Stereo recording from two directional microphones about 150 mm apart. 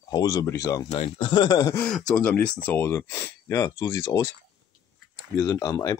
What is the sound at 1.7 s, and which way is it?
Speech, 5° left (ahead or behind).